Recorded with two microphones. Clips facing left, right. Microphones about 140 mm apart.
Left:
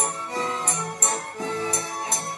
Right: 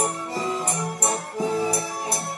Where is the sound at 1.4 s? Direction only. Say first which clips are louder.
Right 6 dB; 10° right (ahead or behind).